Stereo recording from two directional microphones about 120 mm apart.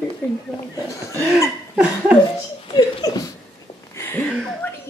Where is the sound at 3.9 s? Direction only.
15° left (ahead or behind).